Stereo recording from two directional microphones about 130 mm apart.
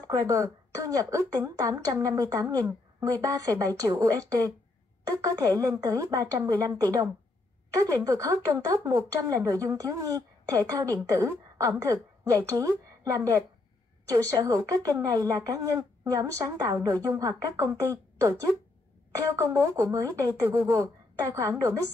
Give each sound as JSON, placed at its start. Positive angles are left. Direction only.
{"t": 0.0, "sound": "speech", "side_deg": -25}
{"t": 5.6, "sound": "speech", "side_deg": -25}